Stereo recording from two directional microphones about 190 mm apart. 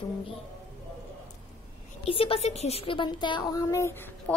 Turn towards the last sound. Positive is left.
turn(degrees=10)  # may be behind; listen again after turning